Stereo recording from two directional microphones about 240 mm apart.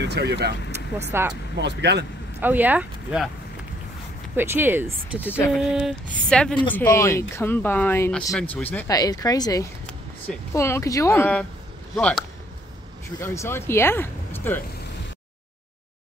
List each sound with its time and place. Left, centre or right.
0.0 s speech: right
1.1 s speech: centre
1.6 s speech: right
2.4 s speech: centre
4.4 s speech: centre
5.7 s a sound: centre
6.7 s speech: centre
12.0 s a sound: centre
13.2 s speech: centre